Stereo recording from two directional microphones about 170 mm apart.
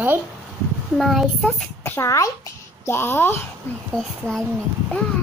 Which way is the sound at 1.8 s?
15° left (ahead or behind).